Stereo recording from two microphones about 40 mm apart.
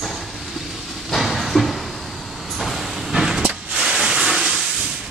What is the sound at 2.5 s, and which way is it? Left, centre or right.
Vehicle, centre.